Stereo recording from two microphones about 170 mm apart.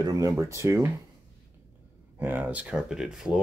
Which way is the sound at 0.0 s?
20° right (ahead or behind).